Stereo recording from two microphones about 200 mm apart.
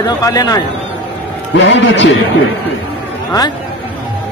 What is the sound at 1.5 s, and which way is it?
Speech, 65° left (ahead or behind).